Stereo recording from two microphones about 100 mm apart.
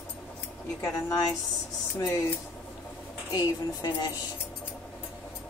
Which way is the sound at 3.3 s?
45° left (ahead or behind).